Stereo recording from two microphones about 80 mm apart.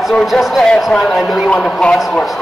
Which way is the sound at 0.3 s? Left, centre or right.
Centre.